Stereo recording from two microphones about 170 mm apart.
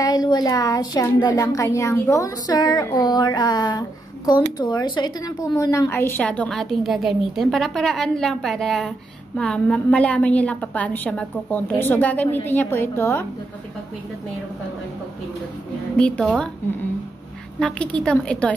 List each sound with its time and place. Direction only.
0.0 s a woman's voice: 20° left (ahead or behind)
16.0 s a woman's voice: 5° left (ahead or behind)
17.6 s a woman's voice: 5° left (ahead or behind)